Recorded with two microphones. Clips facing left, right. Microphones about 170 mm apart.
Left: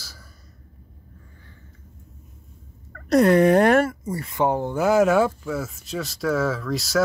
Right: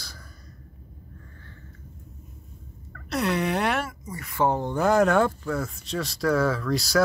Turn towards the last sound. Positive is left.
turn(degrees=0)  # may be behind; listen again after turning